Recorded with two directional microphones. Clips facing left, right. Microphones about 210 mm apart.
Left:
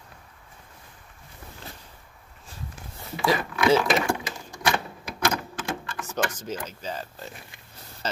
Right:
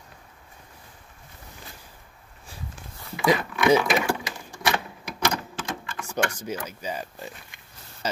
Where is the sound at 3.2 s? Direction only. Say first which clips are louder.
Right 2 dB; 15° right (ahead or behind).